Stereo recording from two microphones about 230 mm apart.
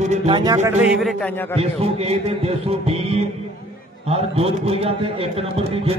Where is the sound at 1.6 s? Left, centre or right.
Right.